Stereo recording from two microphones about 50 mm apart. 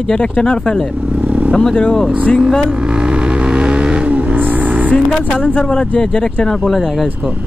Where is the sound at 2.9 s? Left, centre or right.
Centre.